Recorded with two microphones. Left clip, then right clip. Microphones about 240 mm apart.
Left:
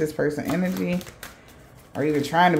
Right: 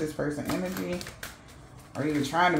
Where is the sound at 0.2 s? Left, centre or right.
Left.